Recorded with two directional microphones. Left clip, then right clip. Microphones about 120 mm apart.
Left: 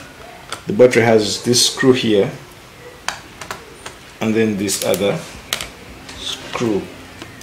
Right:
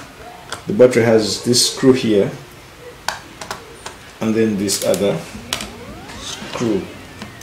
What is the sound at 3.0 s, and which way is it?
Tick-tock, centre (ahead or behind).